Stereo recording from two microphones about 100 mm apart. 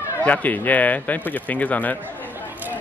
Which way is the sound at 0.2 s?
15° left (ahead or behind).